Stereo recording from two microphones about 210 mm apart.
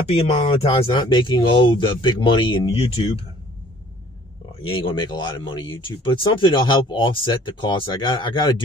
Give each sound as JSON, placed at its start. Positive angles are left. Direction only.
{"t": 0.1, "sound": "speech", "side_deg": 25}
{"t": 4.6, "sound": "speech", "side_deg": 25}